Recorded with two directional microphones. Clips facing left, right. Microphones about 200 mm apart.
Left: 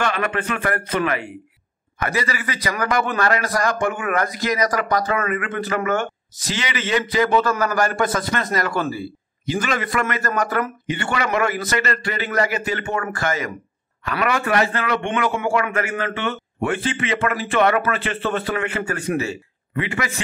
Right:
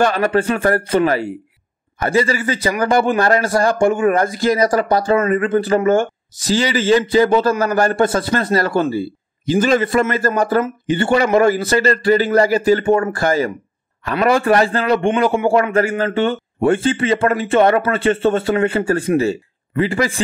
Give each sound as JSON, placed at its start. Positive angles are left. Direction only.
{"t": 0.0, "sound": "a man's voice", "side_deg": -35}